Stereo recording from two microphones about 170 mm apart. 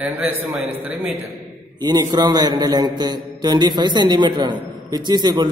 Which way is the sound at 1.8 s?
25° right (ahead or behind).